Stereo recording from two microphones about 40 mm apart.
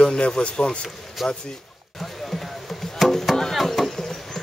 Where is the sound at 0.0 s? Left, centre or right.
Left.